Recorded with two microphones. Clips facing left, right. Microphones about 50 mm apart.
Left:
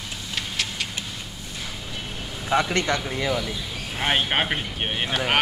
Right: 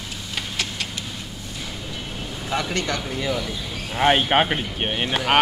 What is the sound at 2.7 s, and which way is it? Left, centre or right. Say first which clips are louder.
Speech: left 2 dB; left.